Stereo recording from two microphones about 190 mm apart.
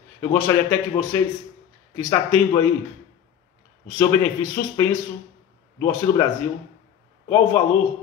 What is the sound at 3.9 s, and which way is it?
A man's voice, 15° left (ahead or behind).